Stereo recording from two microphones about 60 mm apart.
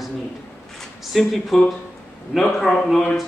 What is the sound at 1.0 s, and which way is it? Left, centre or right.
Speech, centre.